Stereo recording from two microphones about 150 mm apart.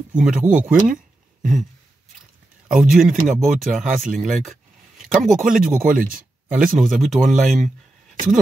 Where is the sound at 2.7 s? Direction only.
5° right (ahead or behind).